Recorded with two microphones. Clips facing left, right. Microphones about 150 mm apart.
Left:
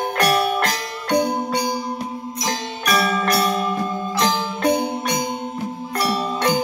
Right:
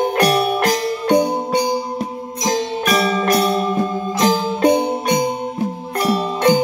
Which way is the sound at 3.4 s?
30° right (ahead or behind).